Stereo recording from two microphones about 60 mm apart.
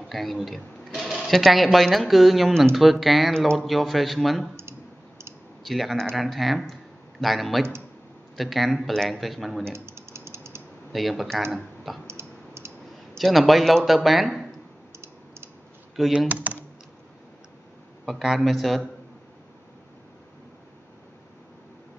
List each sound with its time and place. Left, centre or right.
0.1 s speech: centre
5.6 s speech: centre
9.7 s mechanisms: right
10.9 s speech: centre
12.1 s clicking: right
13.2 s speech: centre
16.3 s speech: right
18.0 s a man's voice: centre